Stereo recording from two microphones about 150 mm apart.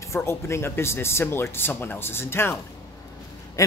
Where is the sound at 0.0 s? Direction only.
20° left (ahead or behind).